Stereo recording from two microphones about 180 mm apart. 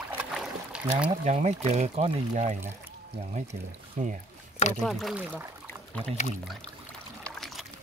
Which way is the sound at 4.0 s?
40° right (ahead or behind).